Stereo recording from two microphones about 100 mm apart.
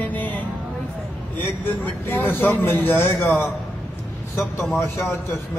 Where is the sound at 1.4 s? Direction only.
20° left (ahead or behind).